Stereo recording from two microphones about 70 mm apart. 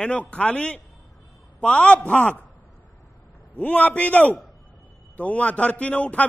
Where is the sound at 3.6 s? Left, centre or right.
Left.